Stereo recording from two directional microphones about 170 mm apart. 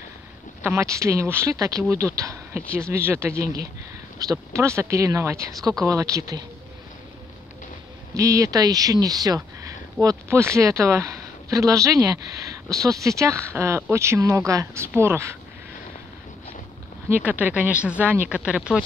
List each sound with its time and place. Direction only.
0.6 s speech: 15° right (ahead or behind)
8.1 s speech: 20° right (ahead or behind)
17.1 s speech: 10° right (ahead or behind)